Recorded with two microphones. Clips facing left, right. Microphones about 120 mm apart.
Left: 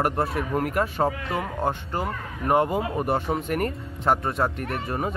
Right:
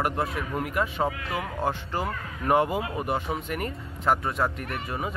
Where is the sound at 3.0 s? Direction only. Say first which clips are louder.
Left 4 dB; 40° left (ahead or behind).